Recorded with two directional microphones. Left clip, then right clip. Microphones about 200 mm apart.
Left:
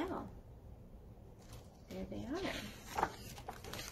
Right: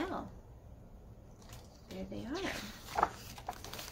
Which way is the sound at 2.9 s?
15° right (ahead or behind).